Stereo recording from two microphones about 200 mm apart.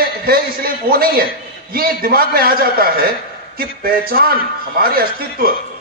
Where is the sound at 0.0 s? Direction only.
50° right (ahead or behind).